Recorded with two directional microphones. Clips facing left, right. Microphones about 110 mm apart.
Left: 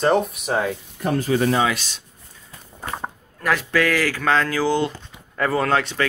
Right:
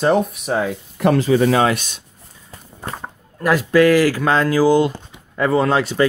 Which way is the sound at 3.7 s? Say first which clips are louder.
Right 9 dB; 15° right (ahead or behind).